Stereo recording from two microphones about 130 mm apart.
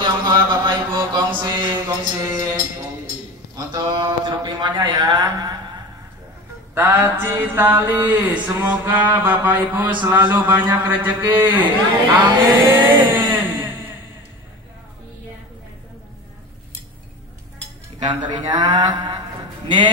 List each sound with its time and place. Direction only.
0.0 s mantra: 35° right (ahead or behind)
2.2 s speech: 25° right (ahead or behind)
6.7 s a man's voice: 15° right (ahead or behind)
12.7 s a sound: 15° right (ahead or behind)
17.9 s speech: 35° right (ahead or behind)